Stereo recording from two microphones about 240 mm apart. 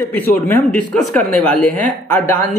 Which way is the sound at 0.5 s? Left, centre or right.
Centre.